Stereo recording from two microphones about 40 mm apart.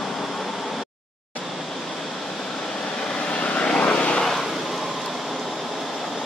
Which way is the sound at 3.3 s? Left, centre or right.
Left.